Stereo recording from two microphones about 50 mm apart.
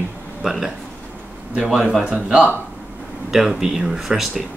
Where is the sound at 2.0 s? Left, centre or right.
Right.